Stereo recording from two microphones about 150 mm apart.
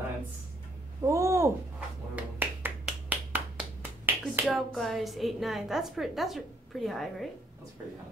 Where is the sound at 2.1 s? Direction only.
10° right (ahead or behind).